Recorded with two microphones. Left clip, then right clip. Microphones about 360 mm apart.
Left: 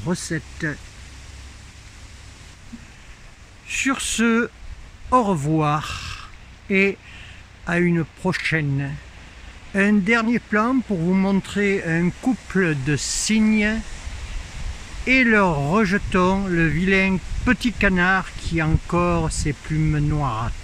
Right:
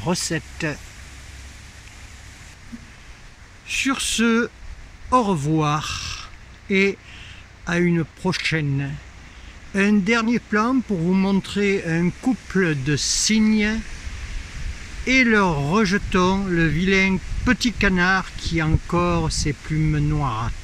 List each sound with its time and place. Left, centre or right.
0.0 s speech: centre
3.6 s speech: centre
15.0 s speech: centre